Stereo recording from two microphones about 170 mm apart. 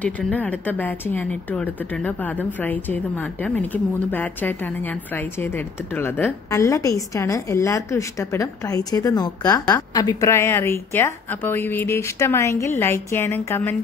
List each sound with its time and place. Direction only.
0.0 s a woman's voice: 10° left (ahead or behind)